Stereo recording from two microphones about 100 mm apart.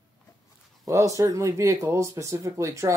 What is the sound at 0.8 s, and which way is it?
Speech, 35° right (ahead or behind).